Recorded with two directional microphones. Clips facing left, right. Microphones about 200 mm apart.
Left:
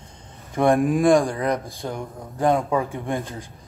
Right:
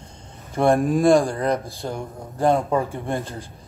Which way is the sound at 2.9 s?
15° left (ahead or behind).